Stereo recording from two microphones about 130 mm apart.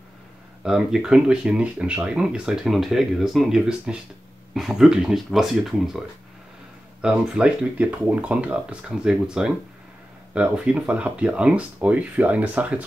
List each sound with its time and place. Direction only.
0.7 s speech: 5° right (ahead or behind)